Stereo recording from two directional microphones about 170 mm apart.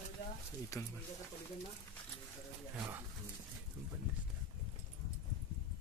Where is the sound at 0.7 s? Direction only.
20° left (ahead or behind).